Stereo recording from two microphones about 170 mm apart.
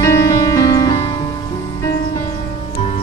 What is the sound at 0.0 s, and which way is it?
Music, 20° left (ahead or behind).